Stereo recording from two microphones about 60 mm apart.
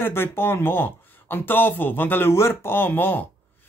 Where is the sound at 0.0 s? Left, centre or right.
Left.